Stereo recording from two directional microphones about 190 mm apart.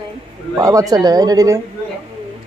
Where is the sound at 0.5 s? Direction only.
15° right (ahead or behind).